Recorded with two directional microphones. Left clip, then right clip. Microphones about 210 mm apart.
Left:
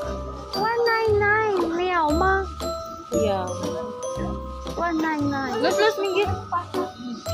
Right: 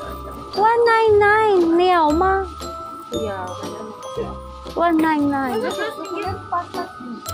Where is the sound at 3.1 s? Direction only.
10° left (ahead or behind).